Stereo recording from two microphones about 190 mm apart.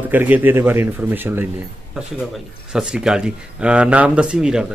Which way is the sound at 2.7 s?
5° right (ahead or behind).